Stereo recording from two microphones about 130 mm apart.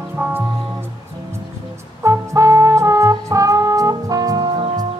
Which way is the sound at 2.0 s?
25° right (ahead or behind).